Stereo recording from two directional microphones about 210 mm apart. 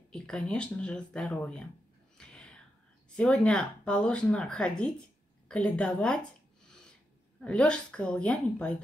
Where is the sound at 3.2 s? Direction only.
5° left (ahead or behind).